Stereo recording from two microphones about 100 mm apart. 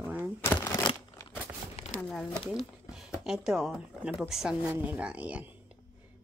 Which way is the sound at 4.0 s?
5° right (ahead or behind).